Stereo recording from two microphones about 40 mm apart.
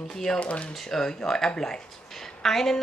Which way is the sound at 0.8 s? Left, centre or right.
Centre.